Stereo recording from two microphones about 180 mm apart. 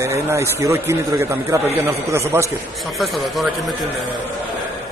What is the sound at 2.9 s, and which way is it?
Speech, centre (ahead or behind).